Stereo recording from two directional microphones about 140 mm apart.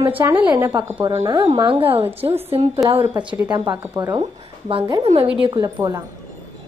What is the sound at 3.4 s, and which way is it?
Speech, 30° right (ahead or behind).